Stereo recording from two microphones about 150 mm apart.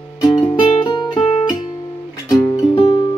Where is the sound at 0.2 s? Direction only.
30° left (ahead or behind).